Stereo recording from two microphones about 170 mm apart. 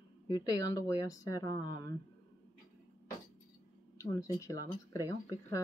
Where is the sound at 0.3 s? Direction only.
20° left (ahead or behind).